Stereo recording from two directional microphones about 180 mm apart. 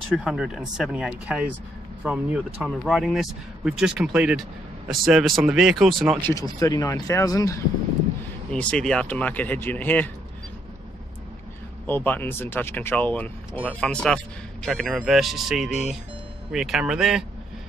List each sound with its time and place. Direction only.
0.1 s speech: 5° right (ahead or behind)
6.2 s speech: 20° left (ahead or behind)
8.5 s speech: 5° left (ahead or behind)
11.8 s speech: 10° left (ahead or behind)